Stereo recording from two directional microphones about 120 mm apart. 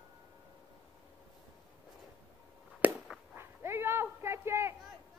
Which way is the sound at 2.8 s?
15° right (ahead or behind).